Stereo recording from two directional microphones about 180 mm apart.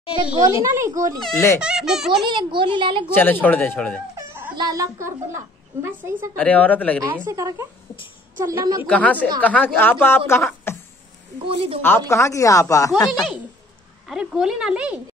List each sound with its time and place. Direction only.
0.4 s a woman's voice: 15° right (ahead or behind)
1.6 s a woman's voice: 5° right (ahead or behind)
2.2 s a woman's voice: 25° right (ahead or behind)
3.2 s speech: 10° left (ahead or behind)
4.3 s music: 10° right (ahead or behind)
4.6 s a child's voice: 20° right (ahead or behind)
6.3 s speech: 10° left (ahead or behind)
7.2 s a child's voice: 15° right (ahead or behind)
8.8 s speech: 10° left (ahead or behind)
10.7 s a sound: 15° left (ahead or behind)
11.4 s a woman's voice: 30° right (ahead or behind)
12.1 s speech: 15° left (ahead or behind)
14.0 s a woman's voice: 5° right (ahead or behind)